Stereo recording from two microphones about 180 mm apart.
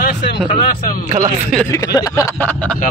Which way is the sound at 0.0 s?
65° left (ahead or behind).